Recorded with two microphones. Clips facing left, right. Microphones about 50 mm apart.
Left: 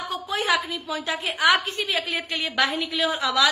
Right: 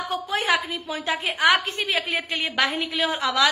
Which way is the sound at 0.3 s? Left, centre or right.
Right.